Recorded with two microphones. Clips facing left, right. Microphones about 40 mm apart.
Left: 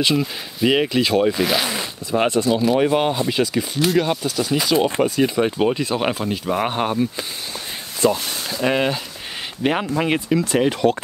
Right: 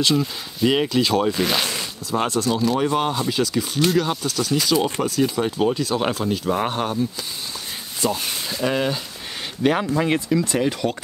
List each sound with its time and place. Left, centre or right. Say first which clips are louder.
0.0 s speech: left 1 dB; centre
1.8 s speech: left 3 dB; centre
4.7 s speech: left 5 dB; left